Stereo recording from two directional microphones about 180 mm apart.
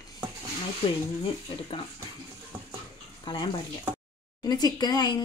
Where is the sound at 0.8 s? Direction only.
35° left (ahead or behind).